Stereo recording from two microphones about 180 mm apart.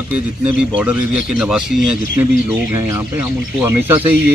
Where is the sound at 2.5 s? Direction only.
15° right (ahead or behind).